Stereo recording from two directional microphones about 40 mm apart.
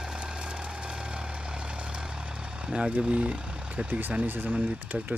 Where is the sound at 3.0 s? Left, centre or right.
Right.